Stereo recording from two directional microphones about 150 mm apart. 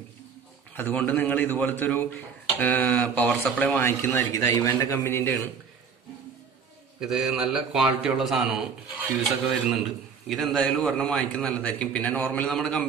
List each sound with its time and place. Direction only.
0.7 s a man's voice: 10° left (ahead or behind)
7.0 s a man's voice: 5° right (ahead or behind)
9.2 s a man's voice: centre (ahead or behind)